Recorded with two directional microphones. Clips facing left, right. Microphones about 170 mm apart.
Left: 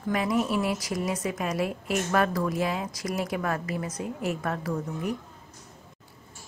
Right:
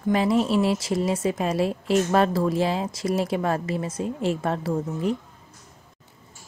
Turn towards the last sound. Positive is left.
turn(degrees=-25)  # may be behind; listen again after turning